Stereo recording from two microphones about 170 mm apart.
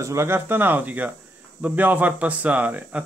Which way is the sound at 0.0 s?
15° right (ahead or behind).